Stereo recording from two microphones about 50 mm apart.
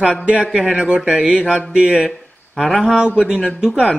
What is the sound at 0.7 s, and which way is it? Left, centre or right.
Mantra, centre.